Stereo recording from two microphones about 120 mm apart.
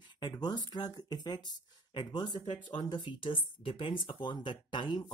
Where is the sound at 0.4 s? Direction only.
35° left (ahead or behind).